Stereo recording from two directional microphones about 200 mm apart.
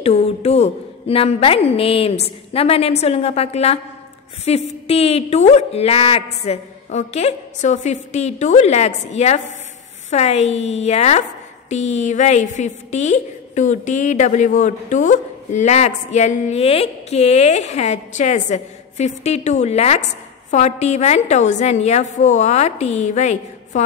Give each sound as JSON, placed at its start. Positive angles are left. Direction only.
{"t": 0.0, "sound": "a woman's voice", "side_deg": 30}